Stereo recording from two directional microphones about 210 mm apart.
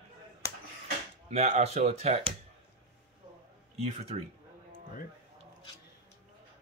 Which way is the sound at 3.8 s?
30° right (ahead or behind).